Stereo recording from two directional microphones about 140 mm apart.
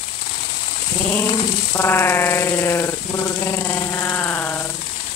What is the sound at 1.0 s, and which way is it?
Sheep, 15° left (ahead or behind).